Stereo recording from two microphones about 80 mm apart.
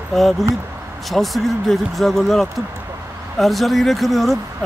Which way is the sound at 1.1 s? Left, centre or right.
Centre.